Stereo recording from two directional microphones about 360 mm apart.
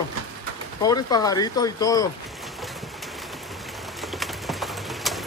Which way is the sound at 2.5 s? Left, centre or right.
Centre.